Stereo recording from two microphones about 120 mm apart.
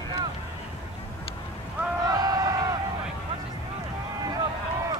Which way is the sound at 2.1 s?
30° right (ahead or behind).